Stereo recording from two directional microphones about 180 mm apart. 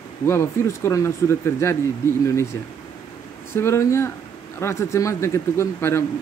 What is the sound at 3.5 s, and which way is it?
Speech, 15° left (ahead or behind).